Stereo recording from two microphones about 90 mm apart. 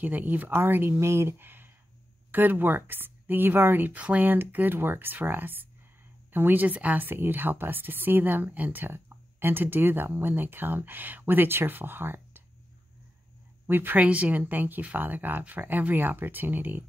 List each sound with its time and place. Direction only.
0.0 s a woman's voice: 20° right (ahead or behind)
13.7 s a woman's voice: 20° right (ahead or behind)